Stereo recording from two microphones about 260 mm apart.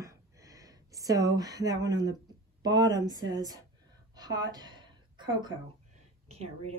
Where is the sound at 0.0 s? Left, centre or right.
Centre.